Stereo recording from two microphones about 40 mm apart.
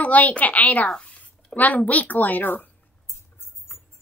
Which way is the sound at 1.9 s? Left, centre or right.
Left.